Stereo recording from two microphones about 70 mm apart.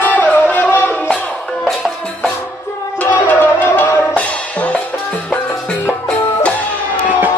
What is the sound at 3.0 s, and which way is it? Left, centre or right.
Music, left.